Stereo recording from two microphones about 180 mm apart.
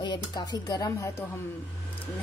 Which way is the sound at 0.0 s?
25° left (ahead or behind).